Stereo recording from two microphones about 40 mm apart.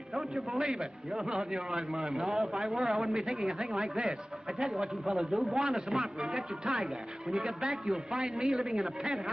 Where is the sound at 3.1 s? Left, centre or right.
Centre.